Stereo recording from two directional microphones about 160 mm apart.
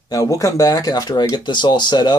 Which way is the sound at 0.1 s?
20° left (ahead or behind).